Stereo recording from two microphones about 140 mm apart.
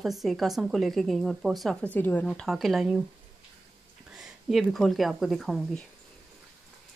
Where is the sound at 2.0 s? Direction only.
15° left (ahead or behind).